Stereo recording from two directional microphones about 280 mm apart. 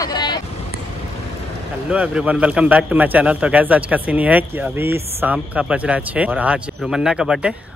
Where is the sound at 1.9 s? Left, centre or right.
Centre.